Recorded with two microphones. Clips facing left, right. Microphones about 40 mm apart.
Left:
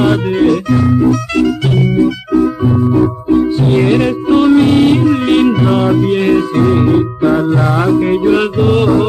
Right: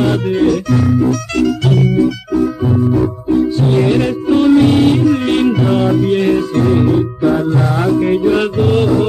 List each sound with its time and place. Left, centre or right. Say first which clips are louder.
0.0 s music: left 2 dB; centre